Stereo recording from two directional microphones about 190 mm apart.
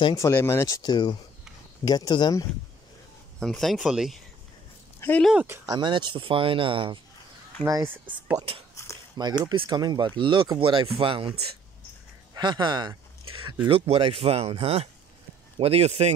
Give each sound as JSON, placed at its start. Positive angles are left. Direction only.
{"t": 0.0, "sound": "speech", "side_deg": 15}
{"t": 3.3, "sound": "speech", "side_deg": 0}
{"t": 5.0, "sound": "speech", "side_deg": 10}
{"t": 5.3, "sound": "speech", "side_deg": -10}
{"t": 5.7, "sound": "speech", "side_deg": -25}
{"t": 7.6, "sound": "speech", "side_deg": -15}
{"t": 8.8, "sound": "a sound", "side_deg": 15}
{"t": 9.4, "sound": "speech", "side_deg": -20}